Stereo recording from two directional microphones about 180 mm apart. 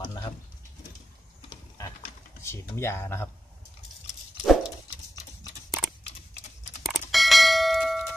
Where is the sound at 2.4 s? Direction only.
15° left (ahead or behind).